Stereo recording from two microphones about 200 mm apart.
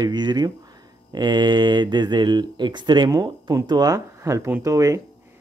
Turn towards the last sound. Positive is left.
turn(degrees=-15)  # may be behind; listen again after turning